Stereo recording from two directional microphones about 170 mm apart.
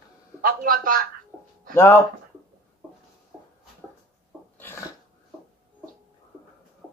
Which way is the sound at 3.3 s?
Centre (ahead or behind).